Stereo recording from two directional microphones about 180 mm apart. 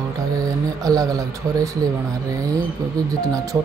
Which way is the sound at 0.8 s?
20° right (ahead or behind).